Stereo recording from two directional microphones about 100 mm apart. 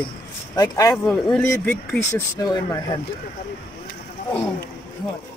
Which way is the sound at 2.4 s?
45° left (ahead or behind).